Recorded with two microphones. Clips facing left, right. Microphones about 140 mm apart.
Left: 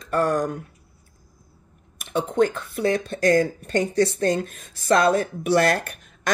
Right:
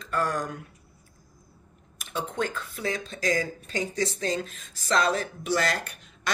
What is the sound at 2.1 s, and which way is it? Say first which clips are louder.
A woman's voice: left 9 dB; 55° left (ahead or behind).